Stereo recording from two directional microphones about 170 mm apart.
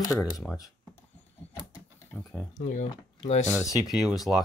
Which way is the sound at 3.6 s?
Centre (ahead or behind).